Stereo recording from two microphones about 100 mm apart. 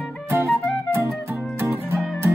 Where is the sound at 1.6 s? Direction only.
25° right (ahead or behind).